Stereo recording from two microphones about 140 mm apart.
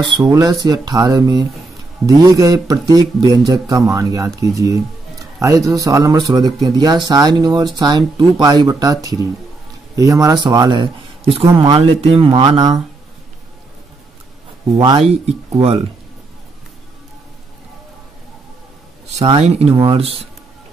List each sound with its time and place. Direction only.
0.0 s speech: 30° right (ahead or behind)
11.4 s speech: 20° right (ahead or behind)
11.7 s speech: 40° right (ahead or behind)
14.8 s speech: 40° right (ahead or behind)
19.2 s speech: 45° right (ahead or behind)